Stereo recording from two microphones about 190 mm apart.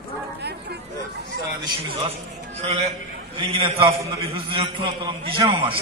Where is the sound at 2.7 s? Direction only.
35° right (ahead or behind).